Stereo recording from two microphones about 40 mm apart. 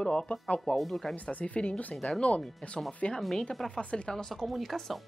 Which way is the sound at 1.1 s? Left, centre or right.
Left.